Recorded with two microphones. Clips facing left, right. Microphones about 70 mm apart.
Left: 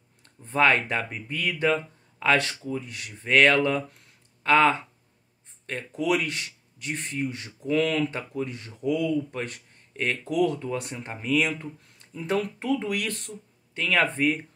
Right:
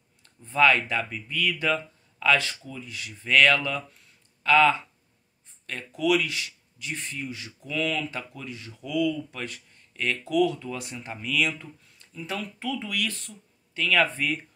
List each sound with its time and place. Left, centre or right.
0.2 s speech: left
3.3 s speech: left
13.7 s speech: left